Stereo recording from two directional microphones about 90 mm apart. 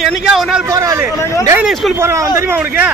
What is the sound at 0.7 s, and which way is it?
Speech, 40° right (ahead or behind).